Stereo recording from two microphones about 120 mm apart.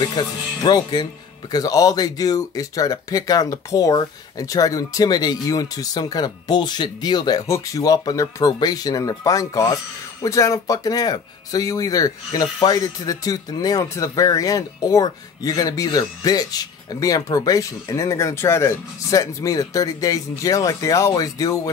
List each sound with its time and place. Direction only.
0.0 s speech: 35° left (ahead or behind)